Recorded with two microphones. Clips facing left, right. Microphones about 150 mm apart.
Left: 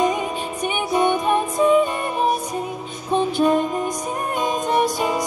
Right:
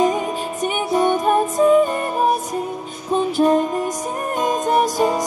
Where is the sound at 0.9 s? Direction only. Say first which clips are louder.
Right 2 dB; 40° right (ahead or behind).